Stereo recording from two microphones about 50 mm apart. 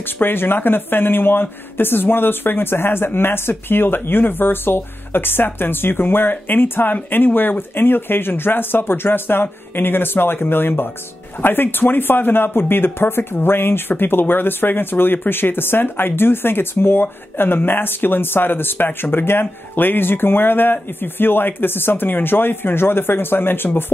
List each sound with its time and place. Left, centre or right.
0.0 s speech: left